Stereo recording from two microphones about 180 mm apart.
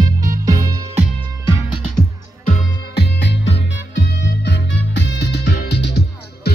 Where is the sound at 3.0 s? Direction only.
75° left (ahead or behind).